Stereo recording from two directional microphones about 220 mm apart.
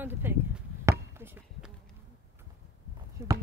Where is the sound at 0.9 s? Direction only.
10° right (ahead or behind).